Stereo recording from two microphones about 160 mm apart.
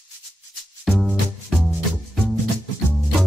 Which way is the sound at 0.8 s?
5° right (ahead or behind).